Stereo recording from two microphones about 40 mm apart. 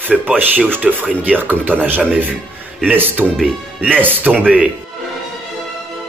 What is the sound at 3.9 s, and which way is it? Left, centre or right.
Speech, right.